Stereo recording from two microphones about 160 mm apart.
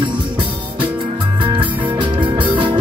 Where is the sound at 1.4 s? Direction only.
30° right (ahead or behind).